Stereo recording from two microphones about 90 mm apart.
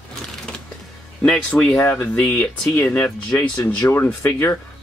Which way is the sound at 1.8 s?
20° left (ahead or behind).